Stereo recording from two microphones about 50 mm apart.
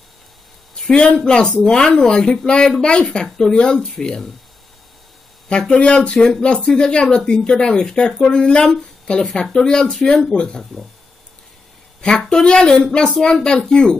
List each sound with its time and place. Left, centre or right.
0.9 s speech: centre
5.5 s speech: left
10.6 s speech: centre
12.2 s speech: centre